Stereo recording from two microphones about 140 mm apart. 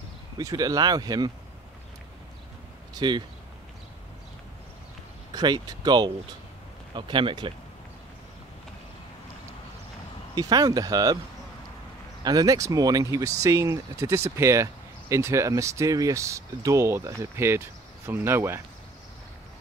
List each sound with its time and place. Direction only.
0.4 s speech: 25° right (ahead or behind)
2.9 s speech: 30° right (ahead or behind)
5.3 s speech: 30° right (ahead or behind)
10.3 s speech: 30° right (ahead or behind)
12.2 s speech: 30° right (ahead or behind)